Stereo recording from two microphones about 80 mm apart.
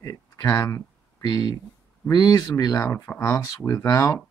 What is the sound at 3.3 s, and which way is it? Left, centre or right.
Speech, left.